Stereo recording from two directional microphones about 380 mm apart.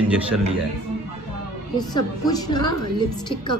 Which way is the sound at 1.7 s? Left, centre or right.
Centre.